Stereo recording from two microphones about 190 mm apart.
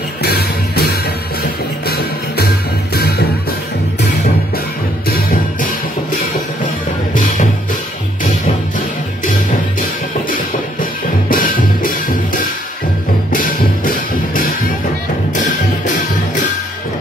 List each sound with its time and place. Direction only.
0.2 s music: 55° left (ahead or behind)
5.0 s music: 50° left (ahead or behind)
10.3 s music: 45° left (ahead or behind)